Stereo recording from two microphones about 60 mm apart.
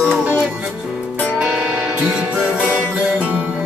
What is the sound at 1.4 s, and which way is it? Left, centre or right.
Music, centre.